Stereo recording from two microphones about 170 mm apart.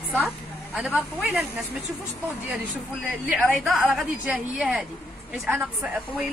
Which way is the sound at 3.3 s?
Centre (ahead or behind).